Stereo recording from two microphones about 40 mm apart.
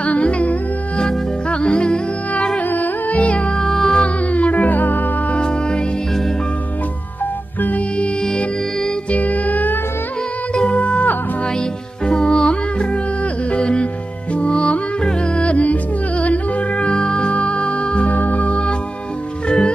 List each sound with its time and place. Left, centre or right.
0.0 s music: left
2.7 s music: left
3.6 s music: centre
4.0 s music: left
5.3 s music: left
9.1 s music: left
10.5 s music: left
12.1 s music: left
18.1 s music: left